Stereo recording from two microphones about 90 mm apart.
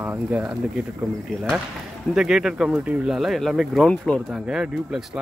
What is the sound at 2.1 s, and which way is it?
Speech, 5° right (ahead or behind).